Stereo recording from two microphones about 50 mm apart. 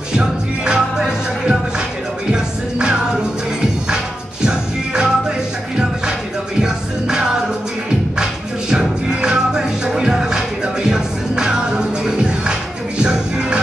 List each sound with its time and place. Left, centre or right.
0.2 s music: centre
4.5 s music: centre
6.6 s music: centre